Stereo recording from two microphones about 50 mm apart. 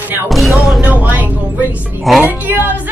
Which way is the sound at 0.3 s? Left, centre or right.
Centre.